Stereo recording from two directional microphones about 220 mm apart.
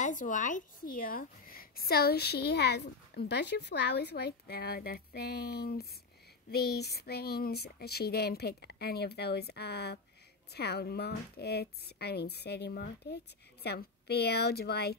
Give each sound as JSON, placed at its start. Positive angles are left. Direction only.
{"t": 0.0, "sound": "a woman's voice", "side_deg": 35}